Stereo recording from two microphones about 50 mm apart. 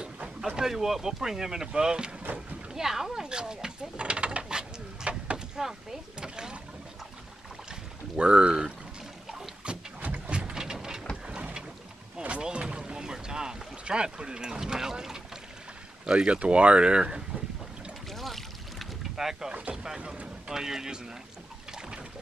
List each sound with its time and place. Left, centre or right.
0.6 s speech: centre
2.3 s boat: centre
5.6 s rowboat: centre
8.2 s speech: centre
9.6 s boat: centre
10.0 s a sound: right
10.5 s a sound: centre
11.2 s boat: centre
12.4 s speech: centre
18.1 s a sound: centre
19.1 s speech: centre